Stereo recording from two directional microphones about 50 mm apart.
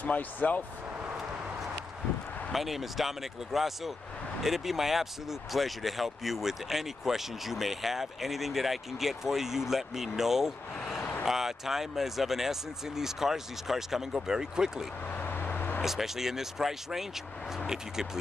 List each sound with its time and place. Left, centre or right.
0.0 s speech: left
2.5 s speech: centre
15.1 s vehicle: left
15.8 s speech: centre